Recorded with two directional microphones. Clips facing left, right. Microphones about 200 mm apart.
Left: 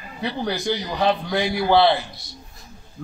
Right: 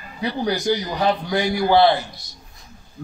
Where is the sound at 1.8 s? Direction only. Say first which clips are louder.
Right 3 dB; 45° right (ahead or behind).